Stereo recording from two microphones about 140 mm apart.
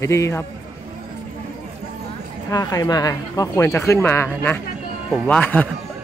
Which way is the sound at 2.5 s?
25° left (ahead or behind).